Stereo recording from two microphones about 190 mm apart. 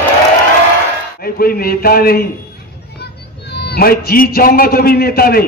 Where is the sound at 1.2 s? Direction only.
50° left (ahead or behind).